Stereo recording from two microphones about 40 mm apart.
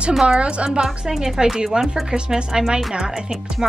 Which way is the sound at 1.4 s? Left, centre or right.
Centre.